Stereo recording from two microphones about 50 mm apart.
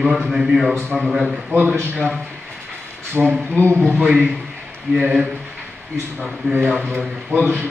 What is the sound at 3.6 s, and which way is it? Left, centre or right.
Speech, right.